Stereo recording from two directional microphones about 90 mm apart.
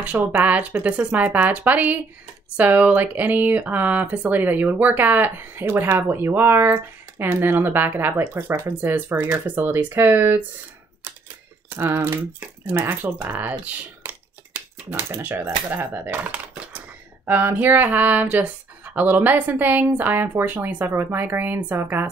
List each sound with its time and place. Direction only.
0.4 s speech: 15° right (ahead or behind)
11.7 s speech: 25° right (ahead or behind)